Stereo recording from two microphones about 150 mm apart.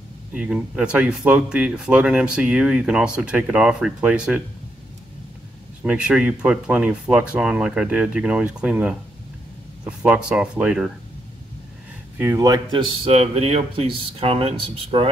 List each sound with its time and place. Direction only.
0.3 s speech: 5° right (ahead or behind)
5.8 s speech: 5° right (ahead or behind)
12.2 s speech: 20° right (ahead or behind); by 15.0 s 40° right (ahead or behind)